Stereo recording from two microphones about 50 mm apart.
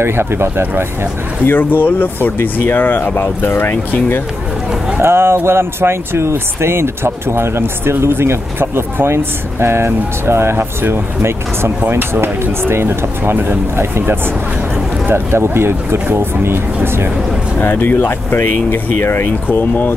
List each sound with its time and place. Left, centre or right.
0.0 s speech: right
1.4 s speech: left
5.0 s speech: right
17.6 s speech: left
19.4 s speech: left